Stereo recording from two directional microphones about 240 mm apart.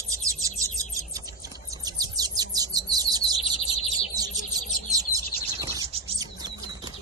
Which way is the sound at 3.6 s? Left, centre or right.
Left.